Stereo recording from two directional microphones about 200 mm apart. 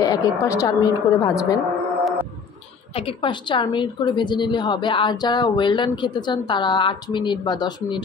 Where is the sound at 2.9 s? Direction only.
25° left (ahead or behind).